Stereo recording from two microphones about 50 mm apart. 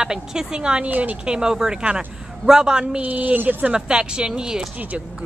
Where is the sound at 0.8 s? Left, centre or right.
Right.